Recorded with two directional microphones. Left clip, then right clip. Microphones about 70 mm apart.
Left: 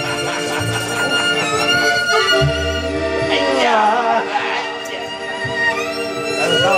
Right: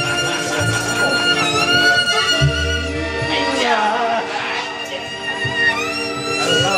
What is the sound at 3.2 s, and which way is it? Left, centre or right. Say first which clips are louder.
Music: left 2 dB; left.